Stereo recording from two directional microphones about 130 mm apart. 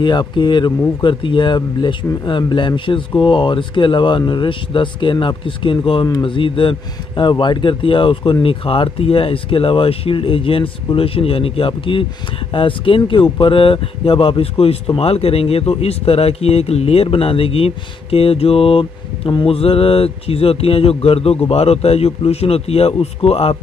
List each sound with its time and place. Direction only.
0.0 s speech: 35° left (ahead or behind)
6.0 s speech: 30° left (ahead or behind)
6.3 s speech: 40° left (ahead or behind)